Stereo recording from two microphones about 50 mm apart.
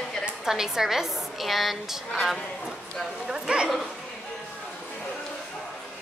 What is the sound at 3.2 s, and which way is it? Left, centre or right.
Speech, centre.